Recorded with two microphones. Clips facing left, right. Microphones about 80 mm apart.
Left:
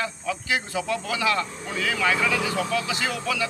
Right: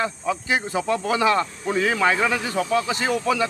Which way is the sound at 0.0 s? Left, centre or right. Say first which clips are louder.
Right 4 dB; right.